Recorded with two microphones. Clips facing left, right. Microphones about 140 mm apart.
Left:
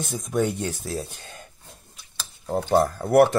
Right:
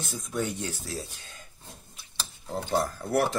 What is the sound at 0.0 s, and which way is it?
Speech, 55° left (ahead or behind).